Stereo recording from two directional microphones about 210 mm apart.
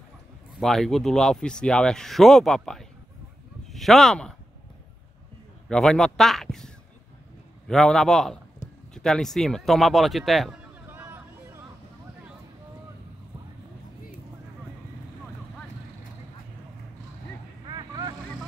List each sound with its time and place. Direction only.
0.6 s speech: centre (ahead or behind)
5.7 s speech: 5° left (ahead or behind)
8.9 s a sound: 5° left (ahead or behind)
17.6 s vehicle: 20° right (ahead or behind)